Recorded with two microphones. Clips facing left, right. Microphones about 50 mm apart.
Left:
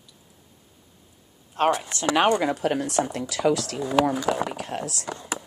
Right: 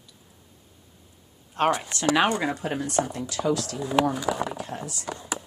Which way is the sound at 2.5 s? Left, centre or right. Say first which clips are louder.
Left 4 dB; left.